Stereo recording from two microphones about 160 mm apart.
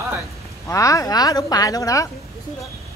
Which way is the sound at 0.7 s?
20° left (ahead or behind).